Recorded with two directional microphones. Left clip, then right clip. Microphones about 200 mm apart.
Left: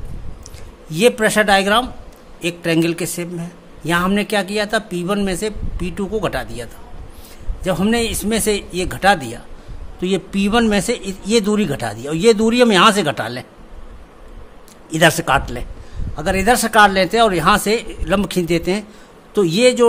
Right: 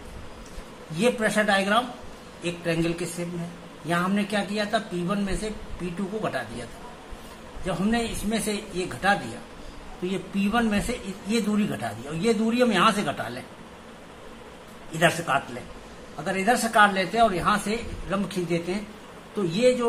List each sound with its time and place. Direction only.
0.9 s speech: 60° left (ahead or behind)
7.6 s speech: 55° left (ahead or behind)
14.9 s speech: 60° left (ahead or behind)